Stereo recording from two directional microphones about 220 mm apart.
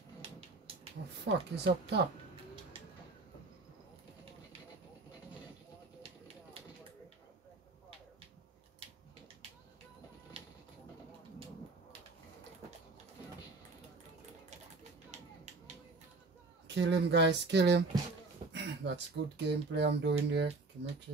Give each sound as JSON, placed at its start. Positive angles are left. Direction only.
{"t": 1.2, "sound": "speech", "side_deg": -50}
{"t": 16.6, "sound": "speech", "side_deg": -50}